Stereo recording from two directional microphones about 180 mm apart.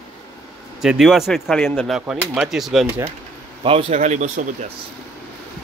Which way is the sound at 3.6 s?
35° right (ahead or behind).